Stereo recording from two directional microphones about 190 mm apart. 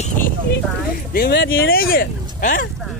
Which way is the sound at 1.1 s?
60° left (ahead or behind).